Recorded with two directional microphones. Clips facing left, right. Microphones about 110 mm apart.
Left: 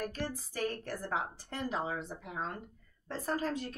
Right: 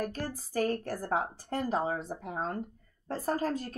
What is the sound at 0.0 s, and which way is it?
Speech, 40° right (ahead or behind).